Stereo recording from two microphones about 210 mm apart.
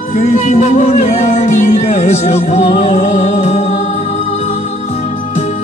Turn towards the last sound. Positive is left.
turn(degrees=30)  # may be behind; listen again after turning